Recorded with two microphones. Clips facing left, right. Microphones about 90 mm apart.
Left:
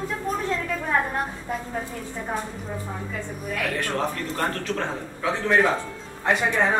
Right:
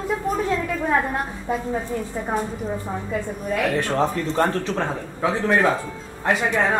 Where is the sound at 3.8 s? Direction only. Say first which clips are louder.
Right 5 dB; 20° right (ahead or behind).